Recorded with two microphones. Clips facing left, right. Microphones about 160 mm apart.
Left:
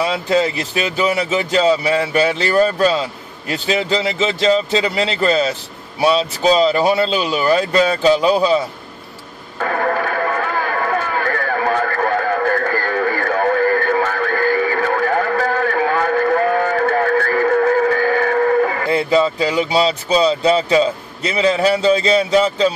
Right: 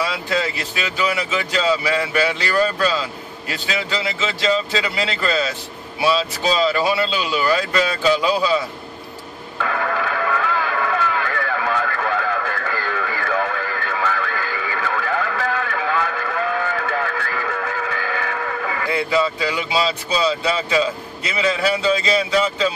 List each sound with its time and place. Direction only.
0.1 s speech: 40° left (ahead or behind)
9.6 s a sound: 40° left (ahead or behind)
18.9 s speech: 40° left (ahead or behind)